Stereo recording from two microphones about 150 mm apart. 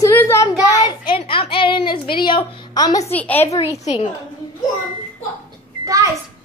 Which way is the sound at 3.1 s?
10° left (ahead or behind).